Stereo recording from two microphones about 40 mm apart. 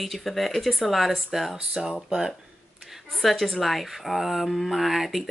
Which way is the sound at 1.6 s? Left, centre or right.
Centre.